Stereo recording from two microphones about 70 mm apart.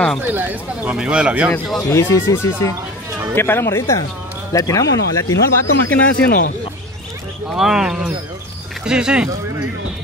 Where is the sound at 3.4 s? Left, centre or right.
Left.